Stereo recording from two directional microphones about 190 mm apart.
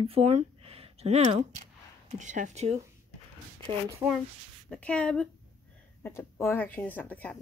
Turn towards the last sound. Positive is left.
turn(degrees=10)  # may be behind; listen again after turning